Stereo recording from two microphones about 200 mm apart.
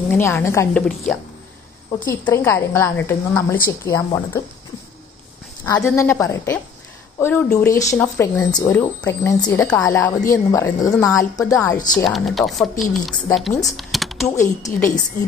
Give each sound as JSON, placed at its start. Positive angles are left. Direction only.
{"t": 0.1, "sound": "a woman's voice", "side_deg": 15}
{"t": 2.2, "sound": "a woman's voice", "side_deg": 15}
{"t": 5.7, "sound": "a woman's voice", "side_deg": 15}
{"t": 12.1, "sound": "speech", "side_deg": 0}
{"t": 13.7, "sound": "typing", "side_deg": 0}
{"t": 14.3, "sound": "a woman's voice", "side_deg": 15}